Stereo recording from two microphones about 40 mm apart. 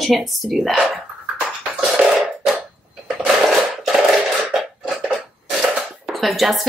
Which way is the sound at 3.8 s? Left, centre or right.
Centre.